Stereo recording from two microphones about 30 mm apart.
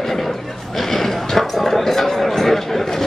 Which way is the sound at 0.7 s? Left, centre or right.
Centre.